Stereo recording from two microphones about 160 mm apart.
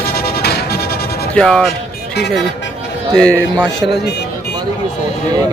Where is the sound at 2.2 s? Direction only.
90° left.